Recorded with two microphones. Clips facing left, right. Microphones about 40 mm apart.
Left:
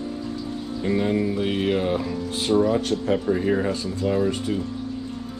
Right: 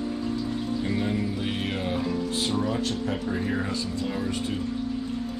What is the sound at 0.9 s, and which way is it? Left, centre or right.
Mantra, left.